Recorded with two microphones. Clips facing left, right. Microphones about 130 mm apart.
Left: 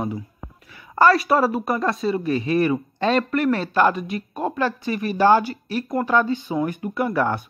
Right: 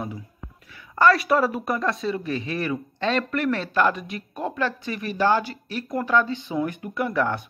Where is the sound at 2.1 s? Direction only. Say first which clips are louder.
Left 7 dB; 45° left (ahead or behind).